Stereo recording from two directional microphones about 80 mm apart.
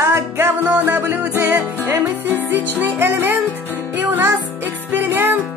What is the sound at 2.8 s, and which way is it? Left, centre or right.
Music, right.